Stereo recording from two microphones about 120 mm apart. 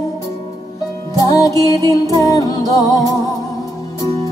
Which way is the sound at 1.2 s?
30° left (ahead or behind).